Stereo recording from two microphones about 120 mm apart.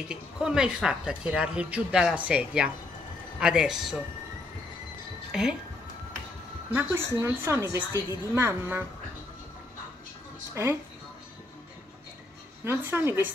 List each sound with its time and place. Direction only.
0.1 s a woman's voice: 5° right (ahead or behind)
5.3 s speech: 5° right (ahead or behind)
6.7 s a woman's voice: 20° right (ahead or behind)
10.5 s speech: 25° right (ahead or behind)
12.6 s a woman's voice: 20° right (ahead or behind)